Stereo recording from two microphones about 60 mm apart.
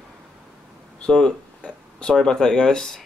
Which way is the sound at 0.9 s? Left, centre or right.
Centre.